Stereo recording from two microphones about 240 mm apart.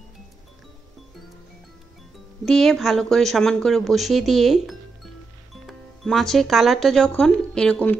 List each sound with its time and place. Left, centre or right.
2.4 s speech: centre